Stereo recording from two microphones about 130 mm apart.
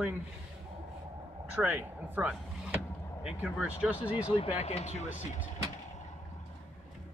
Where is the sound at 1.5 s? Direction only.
10° right (ahead or behind).